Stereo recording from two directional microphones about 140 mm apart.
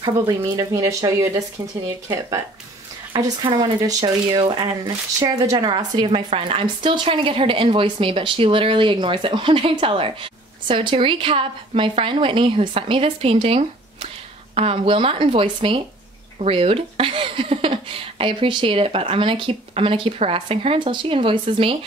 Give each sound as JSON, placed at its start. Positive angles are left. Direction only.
{"t": 0.4, "sound": "speech", "side_deg": -25}
{"t": 3.1, "sound": "speech", "side_deg": -30}